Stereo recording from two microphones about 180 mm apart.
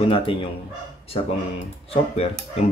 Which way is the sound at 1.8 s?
35° left (ahead or behind).